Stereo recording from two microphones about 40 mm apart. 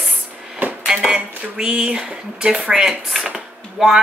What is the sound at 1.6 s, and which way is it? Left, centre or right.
Speech, centre.